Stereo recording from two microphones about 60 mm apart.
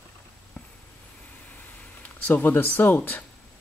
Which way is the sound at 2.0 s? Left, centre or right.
Left.